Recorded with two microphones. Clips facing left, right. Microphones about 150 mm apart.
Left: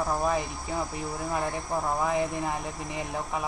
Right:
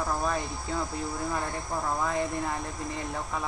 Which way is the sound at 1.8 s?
15° left (ahead or behind).